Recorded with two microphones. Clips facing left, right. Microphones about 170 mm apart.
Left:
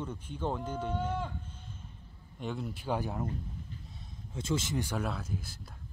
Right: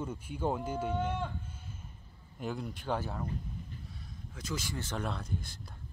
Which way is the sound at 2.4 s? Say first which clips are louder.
Even; centre (ahead or behind).